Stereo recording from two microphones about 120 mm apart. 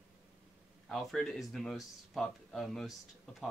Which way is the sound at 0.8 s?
5° left (ahead or behind).